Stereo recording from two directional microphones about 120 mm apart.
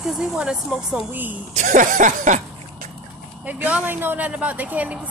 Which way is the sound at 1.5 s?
90° right.